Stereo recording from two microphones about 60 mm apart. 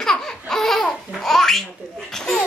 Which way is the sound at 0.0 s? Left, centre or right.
Centre.